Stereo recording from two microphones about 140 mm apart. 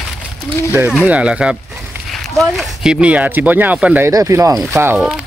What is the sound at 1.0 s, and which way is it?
Speech, 5° right (ahead or behind).